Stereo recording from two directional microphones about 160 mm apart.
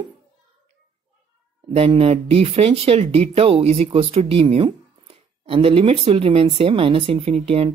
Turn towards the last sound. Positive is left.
turn(degrees=-35)  # may be behind; listen again after turning